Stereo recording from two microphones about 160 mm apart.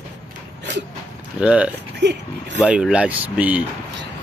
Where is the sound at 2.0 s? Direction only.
90° right.